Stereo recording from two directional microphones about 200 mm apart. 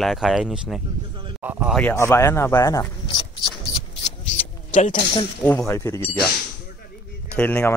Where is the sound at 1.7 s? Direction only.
10° left (ahead or behind).